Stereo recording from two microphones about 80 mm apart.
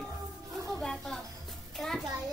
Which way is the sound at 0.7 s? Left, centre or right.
Centre.